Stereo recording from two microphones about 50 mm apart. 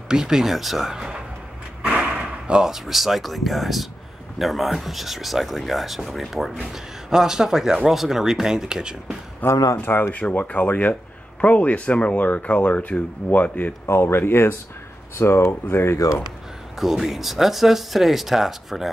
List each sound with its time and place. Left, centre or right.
0.1 s speech: centre
1.9 s a sound: right
2.6 s speech: centre
9.4 s speech: left
9.8 s speech: left
10.1 s speech: left
13.8 s speech: left
16.7 s speech: centre